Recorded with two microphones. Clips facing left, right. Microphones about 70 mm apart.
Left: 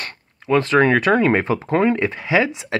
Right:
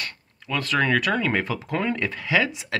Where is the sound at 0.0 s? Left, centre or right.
Left.